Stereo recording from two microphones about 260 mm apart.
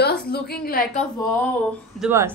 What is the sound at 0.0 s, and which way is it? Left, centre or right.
A woman's voice, left.